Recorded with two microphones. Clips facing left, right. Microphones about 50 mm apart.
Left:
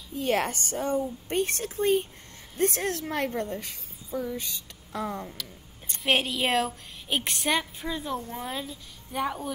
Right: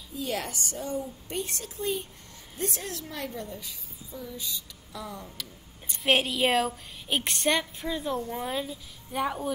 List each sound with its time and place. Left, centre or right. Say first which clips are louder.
0.1 s a woman's voice: left 6 dB; left
6.0 s a woman's voice: right 1 dB; centre